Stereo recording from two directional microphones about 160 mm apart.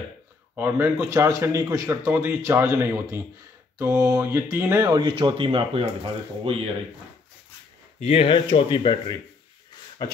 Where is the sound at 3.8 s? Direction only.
15° right (ahead or behind); by 6.7 s 35° right (ahead or behind).